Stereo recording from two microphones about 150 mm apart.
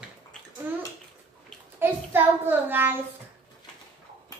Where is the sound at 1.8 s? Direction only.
15° right (ahead or behind).